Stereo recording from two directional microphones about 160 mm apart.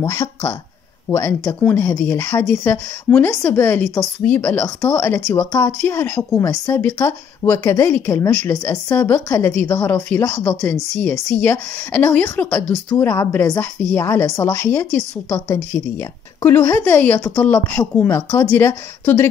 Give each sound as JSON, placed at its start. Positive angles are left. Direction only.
{"t": 0.0, "sound": "a woman's voice", "side_deg": 15}